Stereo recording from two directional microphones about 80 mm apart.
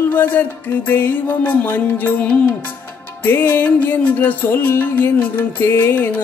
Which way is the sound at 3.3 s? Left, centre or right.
Left.